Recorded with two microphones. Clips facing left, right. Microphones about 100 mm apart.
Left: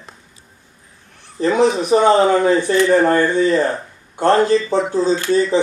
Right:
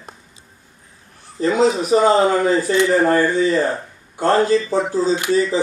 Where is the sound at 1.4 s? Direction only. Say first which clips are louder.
Left 1 dB; 25° left (ahead or behind).